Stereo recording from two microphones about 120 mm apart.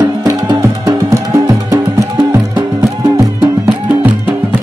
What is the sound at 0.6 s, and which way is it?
Music, 25° right (ahead or behind).